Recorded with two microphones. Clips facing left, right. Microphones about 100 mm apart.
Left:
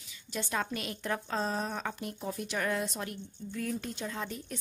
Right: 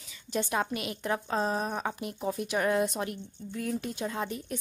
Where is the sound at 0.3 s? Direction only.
15° right (ahead or behind).